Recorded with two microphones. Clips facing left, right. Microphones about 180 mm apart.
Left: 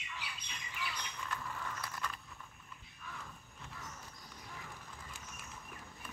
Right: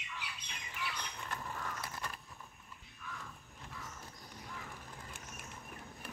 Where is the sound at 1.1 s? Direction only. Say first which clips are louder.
Even; 40° right (ahead or behind).